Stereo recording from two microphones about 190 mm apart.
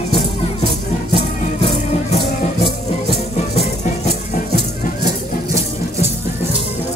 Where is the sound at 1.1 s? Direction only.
30° left (ahead or behind).